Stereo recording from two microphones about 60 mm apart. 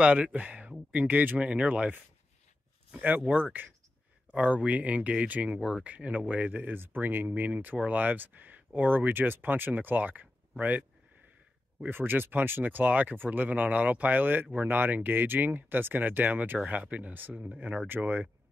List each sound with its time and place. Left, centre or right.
0.0 s speech: right
5.6 s speech: centre
5.9 s speech: right
11.9 s speech: right
17.8 s speech: right